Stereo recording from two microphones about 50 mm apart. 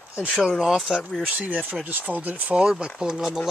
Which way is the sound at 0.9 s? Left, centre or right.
Centre.